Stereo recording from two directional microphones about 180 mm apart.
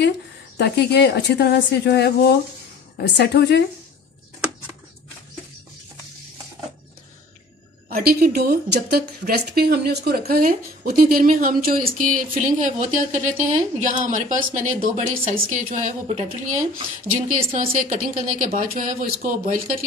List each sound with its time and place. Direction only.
0.6 s speech: 65° left (ahead or behind)
7.9 s speech: 55° right (ahead or behind)